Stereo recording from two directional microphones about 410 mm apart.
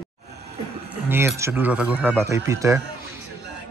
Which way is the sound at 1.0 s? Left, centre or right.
Centre.